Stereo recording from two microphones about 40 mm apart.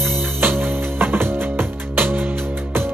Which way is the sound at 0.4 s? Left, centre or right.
Right.